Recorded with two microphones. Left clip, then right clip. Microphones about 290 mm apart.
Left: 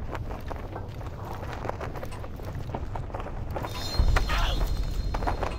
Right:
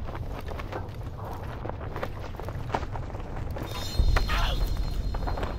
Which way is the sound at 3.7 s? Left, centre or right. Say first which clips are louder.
Even; centre.